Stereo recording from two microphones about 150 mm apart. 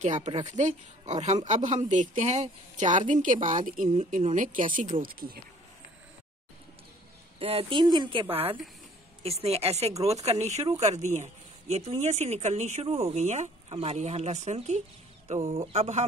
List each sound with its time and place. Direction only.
0.0 s speech: 55° right (ahead or behind); by 5.4 s 75° right (ahead or behind)
7.3 s speech: 40° right (ahead or behind)